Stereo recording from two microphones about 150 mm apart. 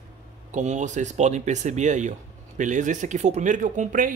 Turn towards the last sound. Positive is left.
turn(degrees=-60)  # may be behind; listen again after turning